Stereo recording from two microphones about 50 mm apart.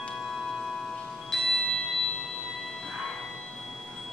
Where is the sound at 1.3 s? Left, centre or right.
Centre.